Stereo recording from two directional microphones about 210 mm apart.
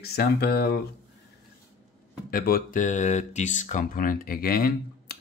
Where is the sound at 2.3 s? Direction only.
45° left (ahead or behind).